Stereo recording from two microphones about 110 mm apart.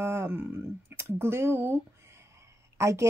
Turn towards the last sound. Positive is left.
turn(degrees=-25)  # may be behind; listen again after turning